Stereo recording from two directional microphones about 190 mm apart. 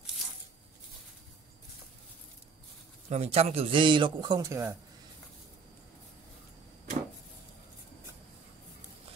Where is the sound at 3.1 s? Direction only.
35° right (ahead or behind); by 4.8 s 15° right (ahead or behind).